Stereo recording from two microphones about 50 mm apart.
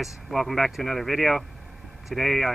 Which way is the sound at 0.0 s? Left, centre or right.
Centre.